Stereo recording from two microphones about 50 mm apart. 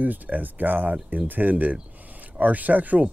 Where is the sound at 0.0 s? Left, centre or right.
Right.